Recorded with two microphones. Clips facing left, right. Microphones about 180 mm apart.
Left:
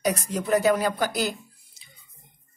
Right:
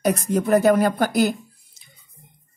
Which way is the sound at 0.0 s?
55° right (ahead or behind).